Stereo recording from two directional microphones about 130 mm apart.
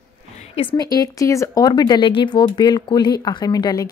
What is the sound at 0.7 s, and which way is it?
Speech, 30° left (ahead or behind).